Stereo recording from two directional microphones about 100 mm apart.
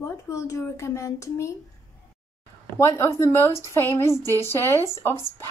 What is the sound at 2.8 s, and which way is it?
Speech, 30° left (ahead or behind).